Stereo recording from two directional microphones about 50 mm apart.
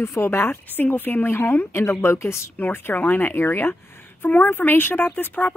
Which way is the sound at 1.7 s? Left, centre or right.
Left.